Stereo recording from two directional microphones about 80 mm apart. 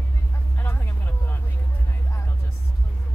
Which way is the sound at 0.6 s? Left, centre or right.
Left.